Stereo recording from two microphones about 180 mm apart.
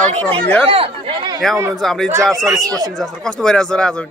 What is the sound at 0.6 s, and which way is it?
Speech, 30° right (ahead or behind).